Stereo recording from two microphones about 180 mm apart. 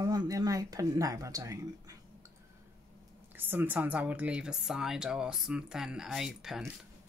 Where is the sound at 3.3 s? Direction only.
10° right (ahead or behind).